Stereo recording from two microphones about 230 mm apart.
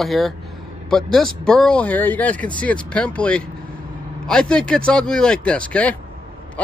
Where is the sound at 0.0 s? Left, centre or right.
Centre.